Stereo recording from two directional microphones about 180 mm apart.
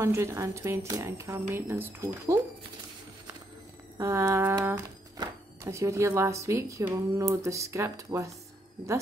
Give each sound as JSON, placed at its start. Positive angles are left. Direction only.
{"t": 0.0, "sound": "speech", "side_deg": -15}
{"t": 4.0, "sound": "speech", "side_deg": -15}